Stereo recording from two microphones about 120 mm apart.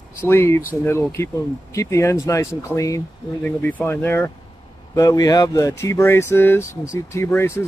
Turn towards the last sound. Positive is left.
turn(degrees=20)  # may be behind; listen again after turning